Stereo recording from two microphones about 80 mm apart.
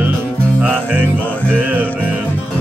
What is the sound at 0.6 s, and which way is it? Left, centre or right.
Music, centre.